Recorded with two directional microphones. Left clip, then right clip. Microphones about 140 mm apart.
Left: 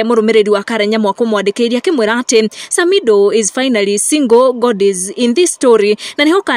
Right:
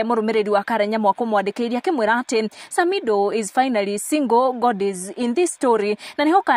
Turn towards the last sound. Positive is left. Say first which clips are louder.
# left 5 dB
turn(degrees=20)  # may be behind; listen again after turning